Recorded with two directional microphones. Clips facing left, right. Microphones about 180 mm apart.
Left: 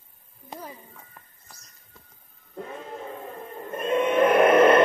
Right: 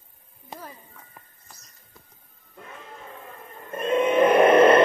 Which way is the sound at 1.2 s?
10° right (ahead or behind).